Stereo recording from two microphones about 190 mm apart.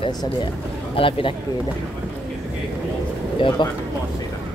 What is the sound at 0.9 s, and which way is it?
Speech, 25° left (ahead or behind).